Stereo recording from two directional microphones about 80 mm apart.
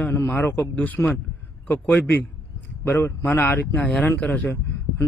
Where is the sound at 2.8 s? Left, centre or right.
Left.